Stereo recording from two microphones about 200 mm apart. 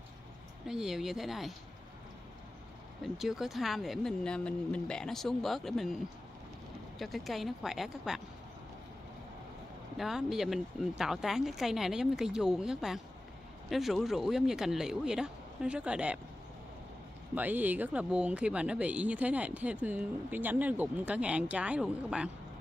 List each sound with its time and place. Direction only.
0.7 s speech: centre (ahead or behind)
3.2 s speech: centre (ahead or behind)
7.0 s speech: centre (ahead or behind)
9.9 s speech: centre (ahead or behind)
17.4 s speech: 10° right (ahead or behind)